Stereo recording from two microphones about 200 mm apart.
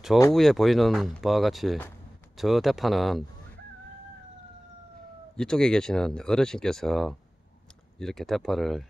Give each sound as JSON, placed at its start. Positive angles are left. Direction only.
{"t": 0.3, "sound": "speech", "side_deg": 0}
{"t": 5.3, "sound": "speech", "side_deg": 5}